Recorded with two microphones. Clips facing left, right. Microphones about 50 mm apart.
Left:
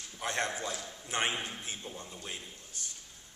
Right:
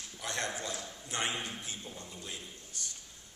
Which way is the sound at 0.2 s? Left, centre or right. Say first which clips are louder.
Left 4 dB; left.